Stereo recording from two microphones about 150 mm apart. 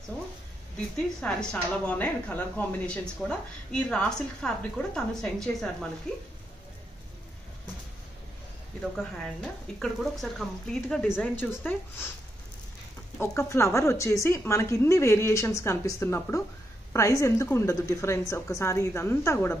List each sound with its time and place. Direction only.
0.7 s a woman's voice: 5° left (ahead or behind)
8.9 s a woman's voice: 5° left (ahead or behind)
13.2 s a woman's voice: 20° left (ahead or behind)